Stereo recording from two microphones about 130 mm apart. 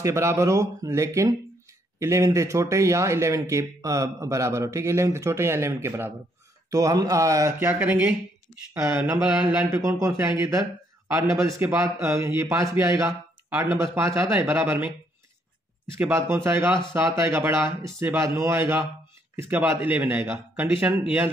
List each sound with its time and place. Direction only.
0.0 s speech: 20° right (ahead or behind)
7.5 s speech: 15° right (ahead or behind)
14.4 s speech: 15° right (ahead or behind)
16.0 s speech: 20° right (ahead or behind)